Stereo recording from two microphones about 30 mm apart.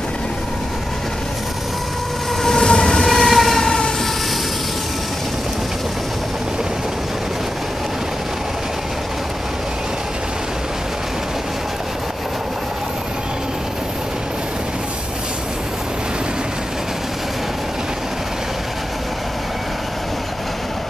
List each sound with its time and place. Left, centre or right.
2.4 s train: centre
3.1 s train: centre